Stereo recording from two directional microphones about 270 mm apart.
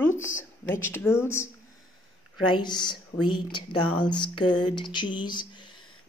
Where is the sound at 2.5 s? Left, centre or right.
Centre.